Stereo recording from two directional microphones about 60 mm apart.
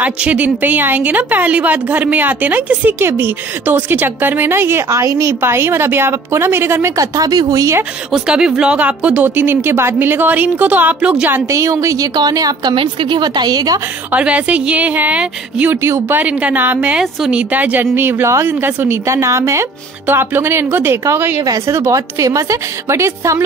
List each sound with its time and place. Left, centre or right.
0.0 s a woman's voice: right
3.0 s speech: right
5.4 s a woman's voice: right
7.0 s speech: right
8.1 s a woman's voice: centre
8.7 s speech: right
11.4 s a woman's voice: right
14.1 s a woman's voice: right
15.7 s a woman's voice: right
16.2 s a woman's voice: right
19.0 s a woman's voice: right
20.1 s a woman's voice: right